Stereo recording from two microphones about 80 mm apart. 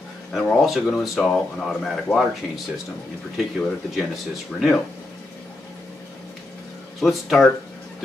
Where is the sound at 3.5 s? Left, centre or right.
Centre.